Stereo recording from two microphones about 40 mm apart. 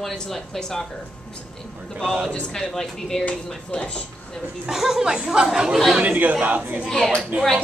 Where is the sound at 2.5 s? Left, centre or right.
Centre.